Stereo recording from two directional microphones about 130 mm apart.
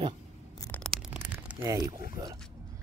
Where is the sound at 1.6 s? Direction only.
30° right (ahead or behind).